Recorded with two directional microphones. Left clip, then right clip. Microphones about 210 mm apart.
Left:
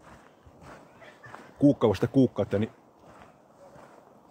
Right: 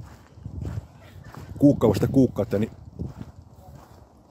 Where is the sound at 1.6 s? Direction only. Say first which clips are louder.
Right 3 dB; 25° right (ahead or behind).